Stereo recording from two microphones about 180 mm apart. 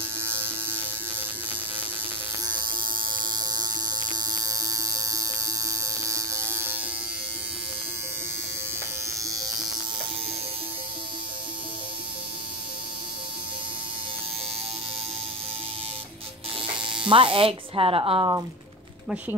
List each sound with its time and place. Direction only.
0.2 s a sound: 10° right (ahead or behind)
2.4 s hum: 25° right (ahead or behind)
9.2 s electric shaver: 20° right (ahead or behind)
16.8 s speech: 30° right (ahead or behind)